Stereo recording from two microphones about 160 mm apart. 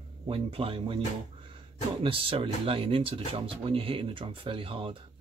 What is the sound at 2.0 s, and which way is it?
Speech, 35° right (ahead or behind).